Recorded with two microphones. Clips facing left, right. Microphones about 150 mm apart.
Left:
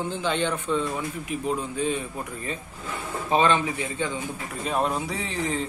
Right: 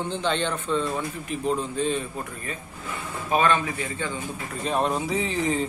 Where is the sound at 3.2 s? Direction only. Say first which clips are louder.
Left 1 dB; 20° left (ahead or behind).